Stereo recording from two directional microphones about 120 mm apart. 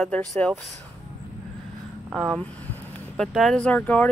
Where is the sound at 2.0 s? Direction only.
5° right (ahead or behind).